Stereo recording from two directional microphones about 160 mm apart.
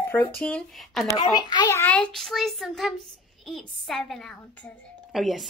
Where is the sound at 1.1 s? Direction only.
25° left (ahead or behind).